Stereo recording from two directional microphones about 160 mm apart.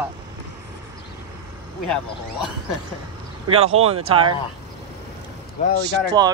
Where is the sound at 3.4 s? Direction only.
40° right (ahead or behind).